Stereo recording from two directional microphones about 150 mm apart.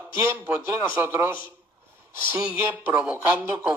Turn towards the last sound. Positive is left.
turn(degrees=-10)  # may be behind; listen again after turning